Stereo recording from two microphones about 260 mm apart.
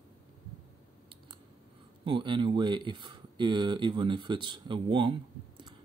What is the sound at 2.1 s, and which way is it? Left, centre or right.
Speech, centre.